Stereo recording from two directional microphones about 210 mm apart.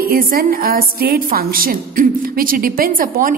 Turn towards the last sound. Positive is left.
turn(degrees=-40)  # may be behind; listen again after turning